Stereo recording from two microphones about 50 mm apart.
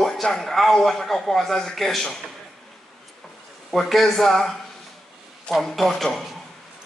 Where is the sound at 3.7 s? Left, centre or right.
Centre.